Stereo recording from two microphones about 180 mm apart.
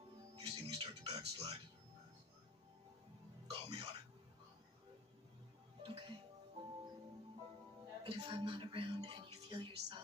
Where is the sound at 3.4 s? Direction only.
30° right (ahead or behind).